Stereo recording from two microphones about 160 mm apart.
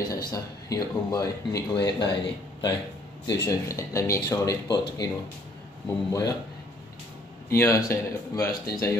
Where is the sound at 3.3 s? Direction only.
20° left (ahead or behind).